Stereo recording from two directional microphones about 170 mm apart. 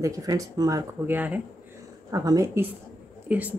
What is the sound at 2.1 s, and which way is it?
Speech, 20° right (ahead or behind).